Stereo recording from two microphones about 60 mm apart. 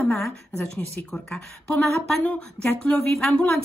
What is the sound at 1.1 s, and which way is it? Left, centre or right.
Speech, centre.